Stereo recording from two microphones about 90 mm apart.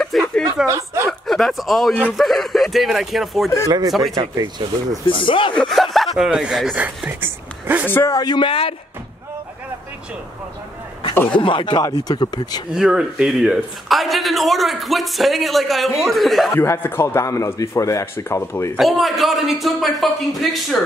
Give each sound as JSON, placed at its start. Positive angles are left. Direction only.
{"t": 0.0, "sound": "speech", "side_deg": 5}
{"t": 0.7, "sound": "speech", "side_deg": -35}
{"t": 1.2, "sound": "a man's voice", "side_deg": 0}
{"t": 3.6, "sound": "speech", "side_deg": -45}
{"t": 4.2, "sound": "speech", "side_deg": -55}
{"t": 5.0, "sound": "speech", "side_deg": 70}
{"t": 5.6, "sound": "a man's voice", "side_deg": 0}
{"t": 7.1, "sound": "speech", "side_deg": -20}
{"t": 8.1, "sound": "speech", "side_deg": 50}
{"t": 8.5, "sound": "speech", "side_deg": 90}
{"t": 11.2, "sound": "speech", "side_deg": 70}
{"t": 12.7, "sound": "a man's voice", "side_deg": -10}
{"t": 16.6, "sound": "a man's voice", "side_deg": 25}
{"t": 18.8, "sound": "a man's voice", "side_deg": 0}